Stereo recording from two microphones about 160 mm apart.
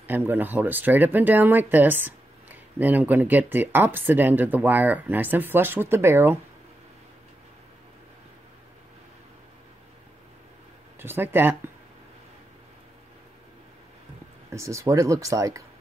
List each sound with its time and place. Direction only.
0.0 s speech: 10° right (ahead or behind)
11.0 s speech: 15° right (ahead or behind)
14.5 s speech: 20° right (ahead or behind)